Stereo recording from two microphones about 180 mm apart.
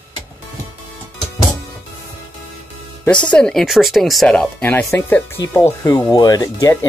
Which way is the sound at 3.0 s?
5° left (ahead or behind).